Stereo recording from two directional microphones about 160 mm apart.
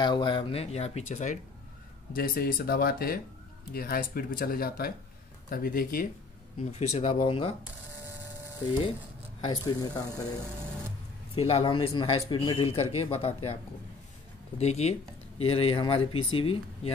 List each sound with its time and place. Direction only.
0.0 s speech: 30° left (ahead or behind); by 1.4 s 50° left (ahead or behind)
2.1 s speech: 65° left (ahead or behind)
6.6 s speech: 45° left (ahead or behind)
9.4 s speech: 25° left (ahead or behind)
11.3 s speech: 35° left (ahead or behind)
14.6 s speech: 45° left (ahead or behind)